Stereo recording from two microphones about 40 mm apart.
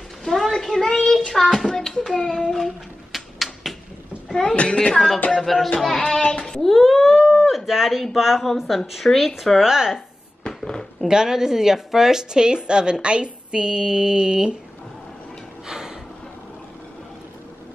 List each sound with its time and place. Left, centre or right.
0.2 s a sound: centre
1.7 s a child's voice: centre
2.5 s a sound: centre
4.3 s speech: centre
5.4 s speech: centre
5.9 s a child's voice: centre
6.3 s child singing: centre
6.6 s wail: centre
7.4 s speech: centre
10.4 s a sound: centre
11.1 s a woman's voice: centre
15.6 s a sound: centre